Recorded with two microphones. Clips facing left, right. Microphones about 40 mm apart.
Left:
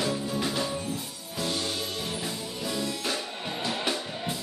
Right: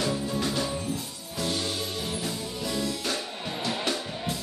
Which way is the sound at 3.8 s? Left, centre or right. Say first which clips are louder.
Even; centre.